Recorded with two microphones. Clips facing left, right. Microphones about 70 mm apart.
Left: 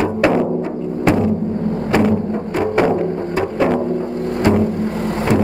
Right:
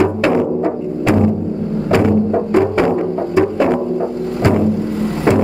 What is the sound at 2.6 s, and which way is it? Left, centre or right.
Music, centre.